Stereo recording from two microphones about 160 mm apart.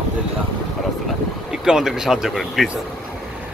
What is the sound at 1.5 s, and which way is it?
Speech, 5° right (ahead or behind).